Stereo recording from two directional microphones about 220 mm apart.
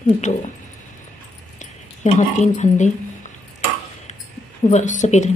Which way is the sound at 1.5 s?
30° left (ahead or behind).